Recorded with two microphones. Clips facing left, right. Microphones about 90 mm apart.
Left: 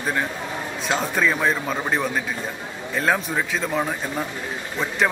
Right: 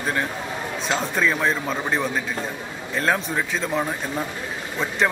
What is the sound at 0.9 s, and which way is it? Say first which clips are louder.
Speech: left 1 dB; 5° left (ahead or behind).